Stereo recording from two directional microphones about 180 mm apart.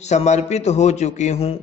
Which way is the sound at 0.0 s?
40° left (ahead or behind).